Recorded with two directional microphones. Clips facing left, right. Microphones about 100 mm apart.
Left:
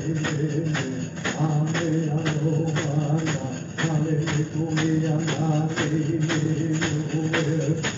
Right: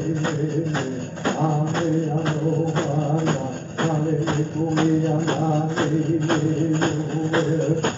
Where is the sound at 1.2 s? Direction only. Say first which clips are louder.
Right 5 dB; 45° right (ahead or behind).